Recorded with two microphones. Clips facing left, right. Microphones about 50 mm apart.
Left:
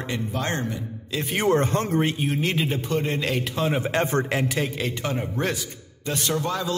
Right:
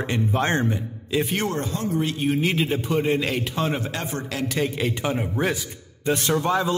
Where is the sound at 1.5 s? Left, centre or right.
Left.